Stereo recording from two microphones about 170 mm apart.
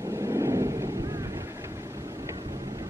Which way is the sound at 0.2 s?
15° right (ahead or behind).